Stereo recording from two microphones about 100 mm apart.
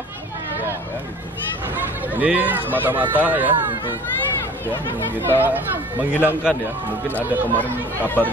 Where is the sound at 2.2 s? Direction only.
15° right (ahead or behind).